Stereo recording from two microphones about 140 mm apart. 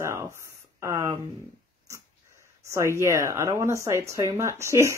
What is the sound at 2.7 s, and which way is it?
Speech, 20° right (ahead or behind).